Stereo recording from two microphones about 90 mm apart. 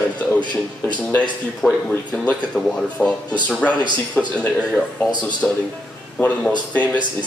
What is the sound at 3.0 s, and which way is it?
A man's voice, 20° left (ahead or behind).